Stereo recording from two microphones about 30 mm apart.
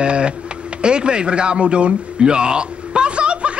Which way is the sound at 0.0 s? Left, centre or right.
Right.